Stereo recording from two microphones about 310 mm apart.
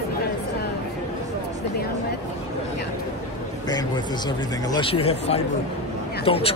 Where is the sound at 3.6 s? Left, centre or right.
Centre.